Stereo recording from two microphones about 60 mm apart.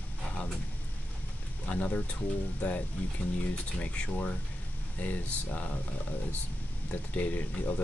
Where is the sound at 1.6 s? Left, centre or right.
Left.